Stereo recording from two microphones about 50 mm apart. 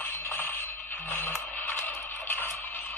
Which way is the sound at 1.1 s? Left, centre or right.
Left.